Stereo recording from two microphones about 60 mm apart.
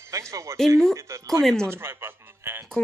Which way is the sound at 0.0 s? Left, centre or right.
Right.